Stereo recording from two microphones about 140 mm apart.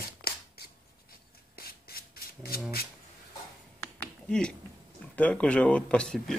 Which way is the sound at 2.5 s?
90° left.